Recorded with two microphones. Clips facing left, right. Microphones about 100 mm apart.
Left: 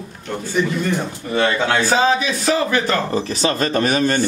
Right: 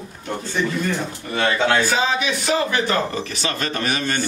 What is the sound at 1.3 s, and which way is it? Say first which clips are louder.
Speech: left 1 dB; 15° left (ahead or behind).